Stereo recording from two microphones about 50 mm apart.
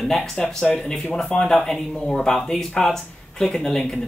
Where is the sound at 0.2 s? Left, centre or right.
Centre.